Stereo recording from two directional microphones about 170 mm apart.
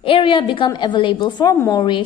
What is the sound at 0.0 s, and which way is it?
A woman's voice, 30° left (ahead or behind).